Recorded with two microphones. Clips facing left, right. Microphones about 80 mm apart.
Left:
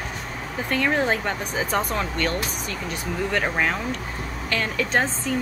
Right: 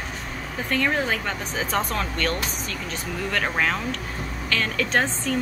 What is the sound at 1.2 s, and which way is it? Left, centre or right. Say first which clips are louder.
Speech: left 2 dB; left.